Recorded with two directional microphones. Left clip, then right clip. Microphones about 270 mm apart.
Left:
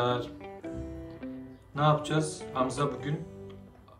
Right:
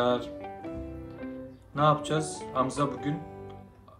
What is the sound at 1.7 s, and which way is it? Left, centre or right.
Speech, centre.